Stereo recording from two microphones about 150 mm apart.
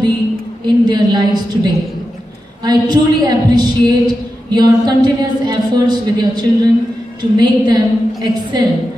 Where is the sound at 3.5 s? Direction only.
30° right (ahead or behind).